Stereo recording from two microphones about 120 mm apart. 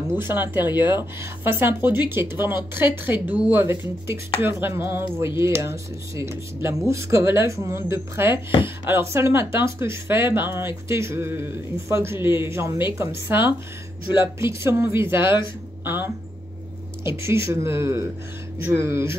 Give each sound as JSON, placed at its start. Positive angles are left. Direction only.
{"t": 0.1, "sound": "speech", "side_deg": -15}